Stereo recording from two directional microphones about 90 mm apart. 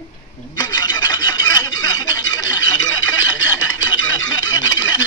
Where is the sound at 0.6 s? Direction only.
50° left (ahead or behind).